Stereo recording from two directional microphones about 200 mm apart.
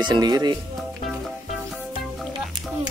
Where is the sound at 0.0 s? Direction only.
20° right (ahead or behind).